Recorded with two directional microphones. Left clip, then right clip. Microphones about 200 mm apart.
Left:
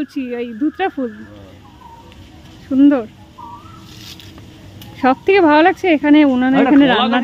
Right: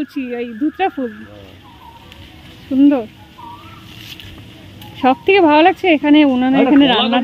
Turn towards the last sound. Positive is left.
turn(degrees=-5)  # may be behind; listen again after turning